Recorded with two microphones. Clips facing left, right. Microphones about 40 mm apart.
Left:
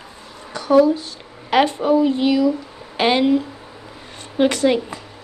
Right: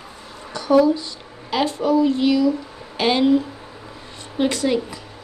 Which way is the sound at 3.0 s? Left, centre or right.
Left.